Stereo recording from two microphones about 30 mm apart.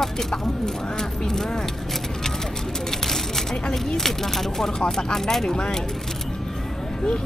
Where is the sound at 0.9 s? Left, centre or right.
Centre.